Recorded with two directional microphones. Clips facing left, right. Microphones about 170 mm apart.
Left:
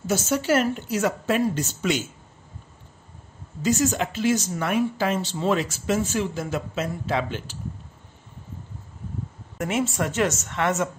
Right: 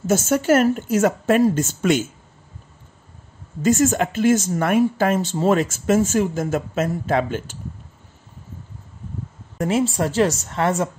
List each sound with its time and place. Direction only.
0.0 s speech: 50° right (ahead or behind)
3.6 s speech: 50° right (ahead or behind)
9.6 s a woman's voice: 35° right (ahead or behind)